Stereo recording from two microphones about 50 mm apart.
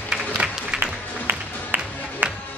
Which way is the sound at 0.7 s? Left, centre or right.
Right.